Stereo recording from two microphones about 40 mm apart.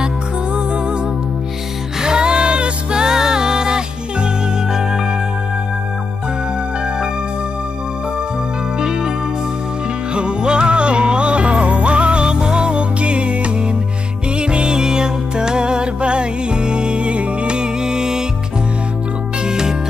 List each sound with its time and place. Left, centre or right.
2.0 s music: centre
8.7 s music: centre
10.1 s music: right